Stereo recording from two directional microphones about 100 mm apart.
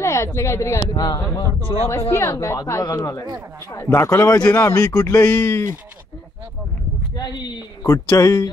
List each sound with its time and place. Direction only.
0.0 s speech: 30° left (ahead or behind)
4.5 s speech: 20° left (ahead or behind)
7.2 s speech: 45° left (ahead or behind)